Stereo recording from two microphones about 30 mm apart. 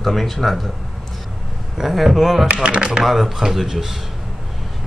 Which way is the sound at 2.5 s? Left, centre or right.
Right.